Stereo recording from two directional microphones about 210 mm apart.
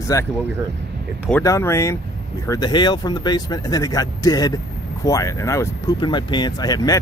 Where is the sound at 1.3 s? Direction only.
10° left (ahead or behind).